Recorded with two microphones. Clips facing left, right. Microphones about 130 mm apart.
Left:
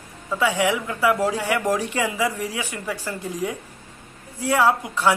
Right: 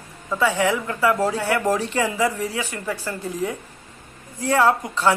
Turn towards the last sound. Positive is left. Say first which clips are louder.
# right 1 dB
turn(degrees=10)  # may be behind; listen again after turning